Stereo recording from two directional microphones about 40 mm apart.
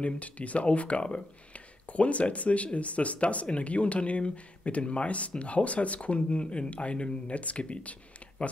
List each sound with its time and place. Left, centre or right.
0.0 s speech: left